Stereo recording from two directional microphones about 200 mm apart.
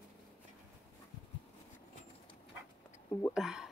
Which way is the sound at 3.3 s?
Centre (ahead or behind).